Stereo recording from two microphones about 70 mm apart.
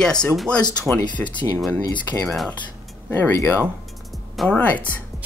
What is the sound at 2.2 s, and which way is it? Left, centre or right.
Speech, centre.